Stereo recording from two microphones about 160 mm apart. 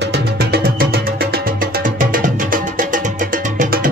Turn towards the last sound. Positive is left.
turn(degrees=-55)  # may be behind; listen again after turning